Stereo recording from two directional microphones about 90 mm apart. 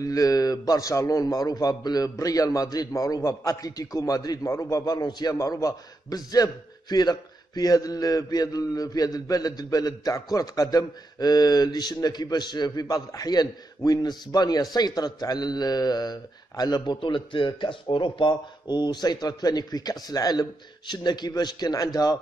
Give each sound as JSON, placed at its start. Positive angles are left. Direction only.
{"t": 0.0, "sound": "a man's voice", "side_deg": 40}